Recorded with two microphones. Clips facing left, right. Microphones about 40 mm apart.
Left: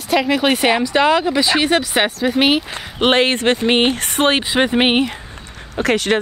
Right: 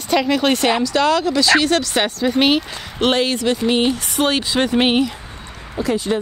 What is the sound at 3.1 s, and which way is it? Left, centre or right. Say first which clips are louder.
Speech: left 3 dB; left.